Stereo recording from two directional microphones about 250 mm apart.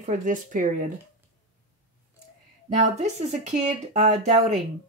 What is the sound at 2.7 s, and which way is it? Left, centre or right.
Speech, right.